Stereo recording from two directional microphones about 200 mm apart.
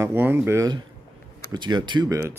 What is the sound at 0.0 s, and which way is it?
Speech, 10° right (ahead or behind).